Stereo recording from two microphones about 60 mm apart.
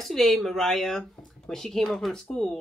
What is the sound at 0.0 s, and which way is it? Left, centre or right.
Speech, centre.